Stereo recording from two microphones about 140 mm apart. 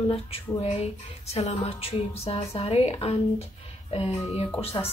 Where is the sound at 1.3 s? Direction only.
45° left (ahead or behind).